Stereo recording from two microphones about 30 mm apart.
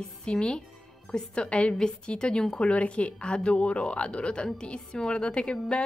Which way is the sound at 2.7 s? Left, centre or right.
Left.